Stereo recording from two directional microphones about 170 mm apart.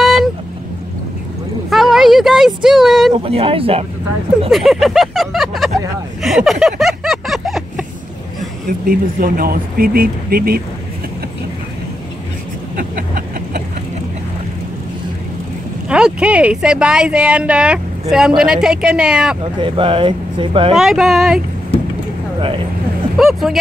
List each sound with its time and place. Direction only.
0.0 s vehicle: centre (ahead or behind)
1.7 s a sound: centre (ahead or behind)
3.2 s speech: 35° right (ahead or behind)
4.5 s speech: centre (ahead or behind)
6.2 s a sound: centre (ahead or behind)
8.6 s speech: 55° right (ahead or behind)
12.7 s a sound: 55° right (ahead or behind)
15.9 s speech: 5° right (ahead or behind)
19.4 s speech: 30° right (ahead or behind)
20.7 s speech: centre (ahead or behind)
23.1 s speech: centre (ahead or behind)